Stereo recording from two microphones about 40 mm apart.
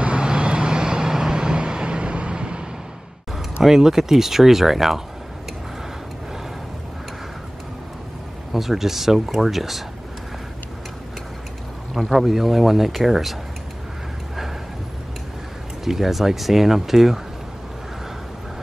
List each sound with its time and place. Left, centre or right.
0.0 s vehicle: right
3.6 s speech: centre
8.5 s speech: centre
11.9 s speech: centre
15.8 s speech: centre